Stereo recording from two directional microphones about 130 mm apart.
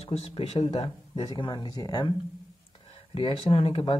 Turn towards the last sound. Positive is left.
turn(degrees=45)  # may be behind; listen again after turning